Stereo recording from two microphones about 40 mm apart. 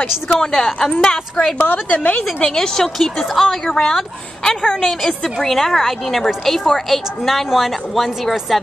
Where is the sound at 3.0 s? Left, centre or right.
Centre.